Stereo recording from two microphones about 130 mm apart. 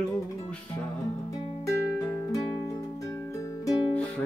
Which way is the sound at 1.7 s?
25° left (ahead or behind).